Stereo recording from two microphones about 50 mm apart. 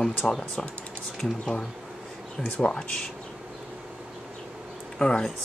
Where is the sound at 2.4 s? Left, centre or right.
Left.